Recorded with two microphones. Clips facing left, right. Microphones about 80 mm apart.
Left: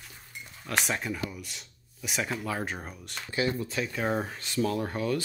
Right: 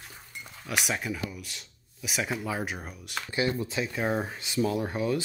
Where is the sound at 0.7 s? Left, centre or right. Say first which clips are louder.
Even; centre.